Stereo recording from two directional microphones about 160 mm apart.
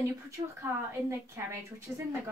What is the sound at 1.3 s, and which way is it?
Speech, 15° right (ahead or behind).